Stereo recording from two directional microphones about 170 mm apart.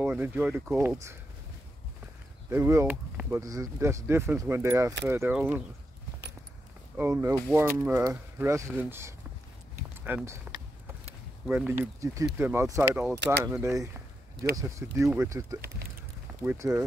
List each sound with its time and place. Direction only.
0.0 s speech: 10° right (ahead or behind)
0.7 s speech: 15° right (ahead or behind)
2.5 s speech: 15° right (ahead or behind)
7.0 s speech: 15° right (ahead or behind)